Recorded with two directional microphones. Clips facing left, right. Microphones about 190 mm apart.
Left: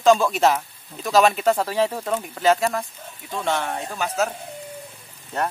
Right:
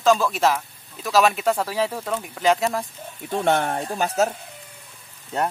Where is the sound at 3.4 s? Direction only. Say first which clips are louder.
Right 3 dB; 55° right (ahead or behind).